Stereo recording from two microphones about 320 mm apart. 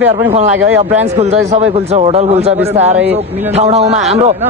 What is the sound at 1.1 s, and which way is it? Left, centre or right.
A man's voice, centre.